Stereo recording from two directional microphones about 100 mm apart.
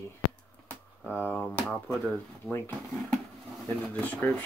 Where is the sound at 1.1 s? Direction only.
15° left (ahead or behind).